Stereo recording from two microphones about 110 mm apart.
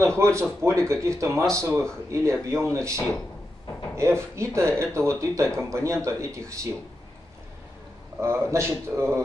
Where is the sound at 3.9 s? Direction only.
25° right (ahead or behind).